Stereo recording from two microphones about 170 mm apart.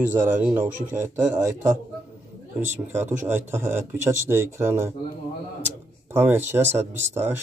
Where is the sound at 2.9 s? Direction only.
10° right (ahead or behind).